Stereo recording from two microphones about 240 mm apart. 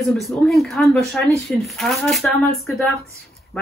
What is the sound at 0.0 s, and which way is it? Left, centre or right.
A woman's voice, centre.